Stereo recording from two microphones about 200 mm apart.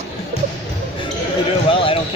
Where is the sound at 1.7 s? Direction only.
25° left (ahead or behind).